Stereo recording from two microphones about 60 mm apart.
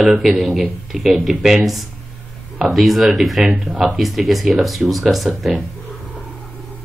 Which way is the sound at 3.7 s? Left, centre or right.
Right.